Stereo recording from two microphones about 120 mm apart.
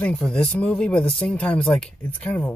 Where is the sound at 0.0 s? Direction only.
10° left (ahead or behind).